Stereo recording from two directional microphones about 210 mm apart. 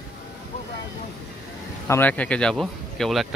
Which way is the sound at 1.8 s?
10° left (ahead or behind).